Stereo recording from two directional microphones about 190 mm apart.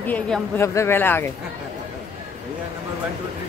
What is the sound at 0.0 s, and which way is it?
Speech, 10° left (ahead or behind).